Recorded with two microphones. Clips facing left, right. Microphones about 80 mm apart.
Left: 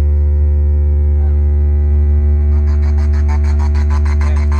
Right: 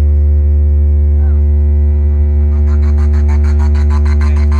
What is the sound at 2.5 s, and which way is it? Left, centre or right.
Music, centre.